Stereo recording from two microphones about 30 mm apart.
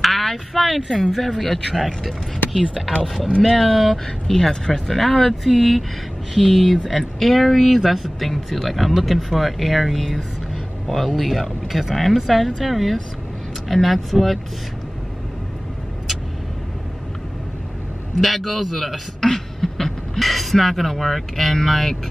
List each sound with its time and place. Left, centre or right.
0.0 s speech: centre
3.4 s speech: centre
4.3 s speech: left
4.8 s speech: centre
5.4 s speech: centre
6.3 s speech: centre
8.3 s speech: centre
18.2 s speech: centre